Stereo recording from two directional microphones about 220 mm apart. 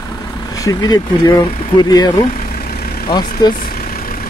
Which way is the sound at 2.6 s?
45° left (ahead or behind).